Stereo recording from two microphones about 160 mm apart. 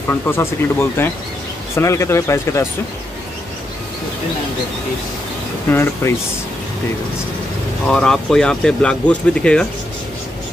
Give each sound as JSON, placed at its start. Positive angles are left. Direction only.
{"t": 0.1, "sound": "speech", "side_deg": 15}
{"t": 5.7, "sound": "speech", "side_deg": 15}
{"t": 7.9, "sound": "speech", "side_deg": 5}